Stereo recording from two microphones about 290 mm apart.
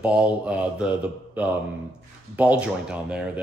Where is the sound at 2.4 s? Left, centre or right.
Centre.